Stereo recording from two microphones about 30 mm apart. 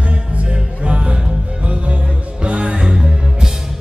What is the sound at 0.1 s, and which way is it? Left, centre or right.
Music, right.